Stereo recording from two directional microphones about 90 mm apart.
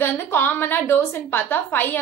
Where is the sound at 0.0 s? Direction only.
25° left (ahead or behind).